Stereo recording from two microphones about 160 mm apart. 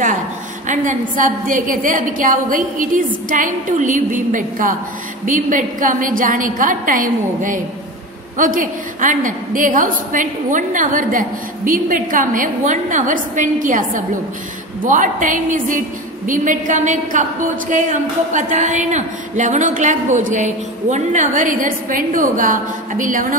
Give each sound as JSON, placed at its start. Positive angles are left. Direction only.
{"t": 0.7, "sound": "a woman's voice", "side_deg": -55}